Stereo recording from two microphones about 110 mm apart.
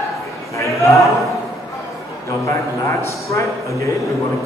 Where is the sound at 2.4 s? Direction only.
25° left (ahead or behind).